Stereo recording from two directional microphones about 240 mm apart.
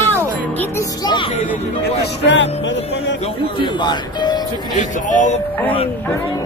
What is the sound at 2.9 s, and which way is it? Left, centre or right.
Speech, left.